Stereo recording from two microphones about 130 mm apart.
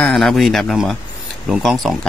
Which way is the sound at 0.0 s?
5° left (ahead or behind).